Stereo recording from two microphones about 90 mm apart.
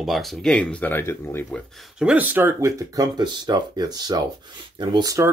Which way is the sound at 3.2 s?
50° right (ahead or behind).